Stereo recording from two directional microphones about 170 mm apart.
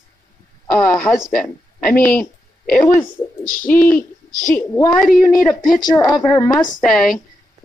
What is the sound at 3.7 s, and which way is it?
A woman's voice, 10° left (ahead or behind).